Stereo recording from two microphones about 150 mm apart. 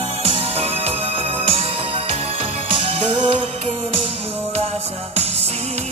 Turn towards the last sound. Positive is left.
turn(degrees=-45)  # may be behind; listen again after turning